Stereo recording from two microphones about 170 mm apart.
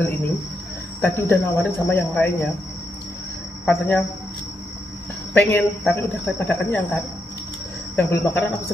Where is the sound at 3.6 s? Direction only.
10° left (ahead or behind).